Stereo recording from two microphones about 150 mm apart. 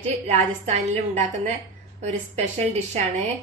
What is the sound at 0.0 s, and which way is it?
A woman's voice, 50° right (ahead or behind).